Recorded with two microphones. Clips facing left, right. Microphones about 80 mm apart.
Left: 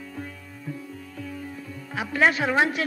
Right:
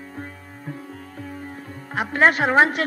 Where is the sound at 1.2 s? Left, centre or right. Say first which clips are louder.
Even; right.